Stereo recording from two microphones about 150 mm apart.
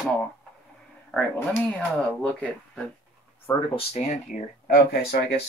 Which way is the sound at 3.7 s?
45° left (ahead or behind).